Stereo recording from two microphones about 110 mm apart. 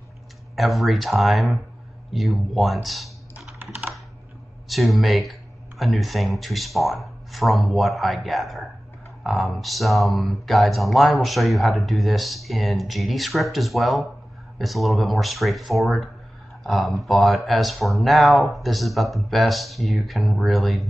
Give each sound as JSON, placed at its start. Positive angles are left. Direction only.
{"t": 0.6, "sound": "speech", "side_deg": 0}
{"t": 3.3, "sound": "computer keyboard", "side_deg": -15}
{"t": 4.6, "sound": "speech", "side_deg": 0}